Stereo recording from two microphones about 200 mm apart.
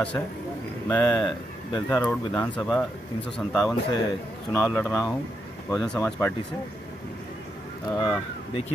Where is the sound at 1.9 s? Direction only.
5° left (ahead or behind).